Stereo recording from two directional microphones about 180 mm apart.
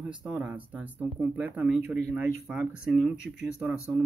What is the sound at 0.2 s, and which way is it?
Speech, 5° right (ahead or behind).